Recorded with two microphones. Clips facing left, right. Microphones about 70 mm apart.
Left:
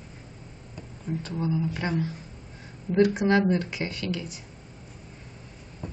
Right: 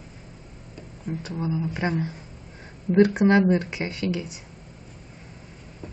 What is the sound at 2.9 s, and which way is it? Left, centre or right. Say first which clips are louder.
Speech: right 4 dB; right.